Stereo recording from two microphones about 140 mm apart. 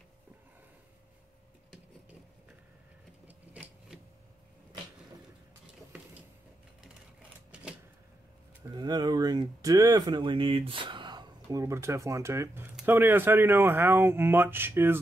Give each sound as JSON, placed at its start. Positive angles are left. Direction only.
{"t": 3.3, "sound": "sewing machine", "side_deg": -10}
{"t": 8.6, "sound": "speech", "side_deg": -30}